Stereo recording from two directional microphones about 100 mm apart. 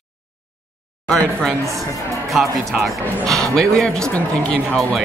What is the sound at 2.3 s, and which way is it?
Speech, centre (ahead or behind).